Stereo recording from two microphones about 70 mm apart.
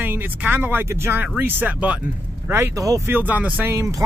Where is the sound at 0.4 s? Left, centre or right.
Right.